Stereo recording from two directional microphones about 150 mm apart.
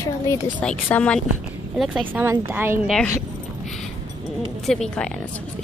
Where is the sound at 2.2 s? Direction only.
15° right (ahead or behind).